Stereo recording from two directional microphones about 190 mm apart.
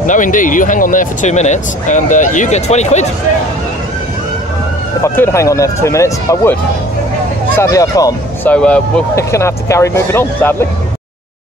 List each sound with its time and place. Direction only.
0.0 s speech: 45° left (ahead or behind)
5.0 s speech: 15° left (ahead or behind)
8.5 s speech: 5° left (ahead or behind)